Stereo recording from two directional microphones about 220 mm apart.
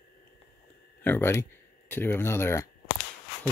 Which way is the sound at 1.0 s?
10° left (ahead or behind).